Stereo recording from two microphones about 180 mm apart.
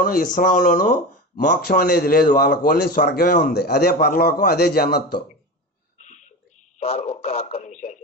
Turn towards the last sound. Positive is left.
turn(degrees=45)  # may be behind; listen again after turning